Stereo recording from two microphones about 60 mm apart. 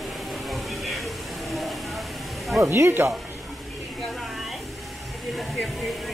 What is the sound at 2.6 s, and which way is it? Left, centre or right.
Speech, right.